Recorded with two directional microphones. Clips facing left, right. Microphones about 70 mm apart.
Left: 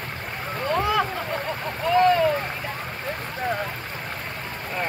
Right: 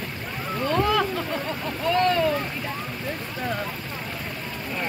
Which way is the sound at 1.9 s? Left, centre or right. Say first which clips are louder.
Left 4 dB; centre.